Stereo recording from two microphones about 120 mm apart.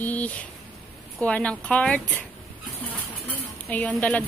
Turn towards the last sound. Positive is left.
turn(degrees=10)  # may be behind; listen again after turning